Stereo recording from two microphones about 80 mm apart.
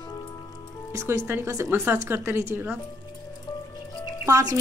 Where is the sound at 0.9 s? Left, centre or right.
Right.